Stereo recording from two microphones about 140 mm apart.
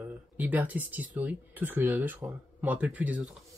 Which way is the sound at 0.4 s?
10° right (ahead or behind).